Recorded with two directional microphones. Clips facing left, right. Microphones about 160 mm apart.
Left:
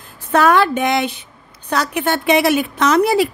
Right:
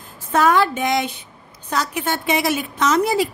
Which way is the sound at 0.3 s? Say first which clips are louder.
Left 3 dB; 70° left (ahead or behind).